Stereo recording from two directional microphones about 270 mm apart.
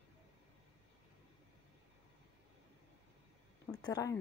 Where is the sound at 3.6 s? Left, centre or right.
Centre.